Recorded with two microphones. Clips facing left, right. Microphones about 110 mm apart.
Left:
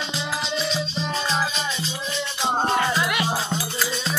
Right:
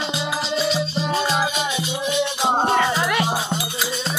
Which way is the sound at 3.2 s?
15° right (ahead or behind).